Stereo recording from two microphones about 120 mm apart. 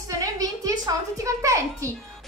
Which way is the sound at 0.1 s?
30° right (ahead or behind).